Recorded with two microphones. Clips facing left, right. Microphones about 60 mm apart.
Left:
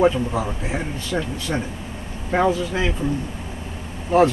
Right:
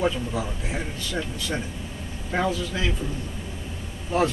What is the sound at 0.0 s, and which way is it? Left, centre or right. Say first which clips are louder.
A man's voice: left 7 dB; left.